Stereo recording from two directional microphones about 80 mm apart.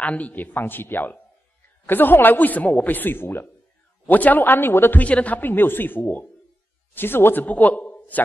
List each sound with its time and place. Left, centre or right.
0.0 s speech: centre
5.0 s a man's voice: centre